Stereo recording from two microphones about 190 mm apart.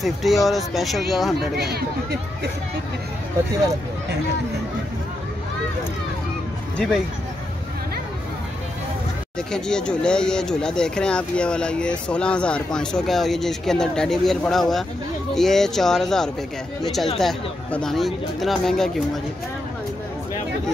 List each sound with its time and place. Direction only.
0.0 s speech: centre (ahead or behind)
1.6 s speech: 55° right (ahead or behind)
9.5 s speech: 5° left (ahead or behind)